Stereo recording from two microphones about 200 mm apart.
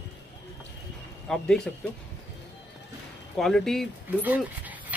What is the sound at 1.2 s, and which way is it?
Speech, 5° left (ahead or behind).